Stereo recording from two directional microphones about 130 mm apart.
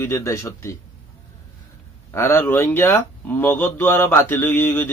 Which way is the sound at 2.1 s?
20° left (ahead or behind).